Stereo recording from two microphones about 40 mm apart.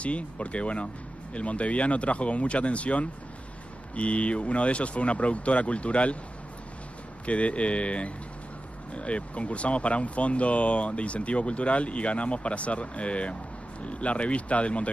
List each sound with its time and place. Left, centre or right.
0.0 s speech: left
7.2 s speech: left